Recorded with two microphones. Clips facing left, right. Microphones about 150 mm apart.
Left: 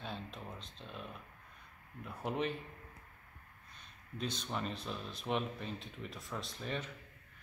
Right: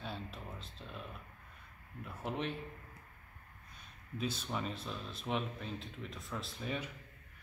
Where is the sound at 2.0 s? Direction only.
Centre (ahead or behind).